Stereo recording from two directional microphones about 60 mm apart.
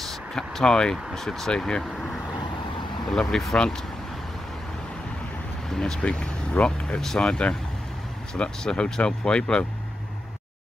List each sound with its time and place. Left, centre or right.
0.0 s speech: centre
5.8 s speech: centre
7.0 s speech: centre
8.4 s speech: centre